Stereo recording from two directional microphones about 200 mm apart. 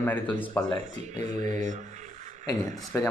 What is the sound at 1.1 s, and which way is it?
Mantra, 35° right (ahead or behind).